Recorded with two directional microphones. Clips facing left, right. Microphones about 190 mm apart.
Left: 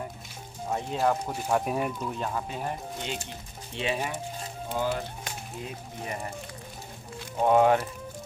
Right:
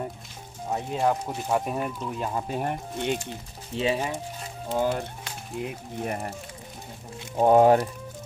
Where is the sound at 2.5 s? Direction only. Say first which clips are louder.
Right 4 dB; 55° right (ahead or behind).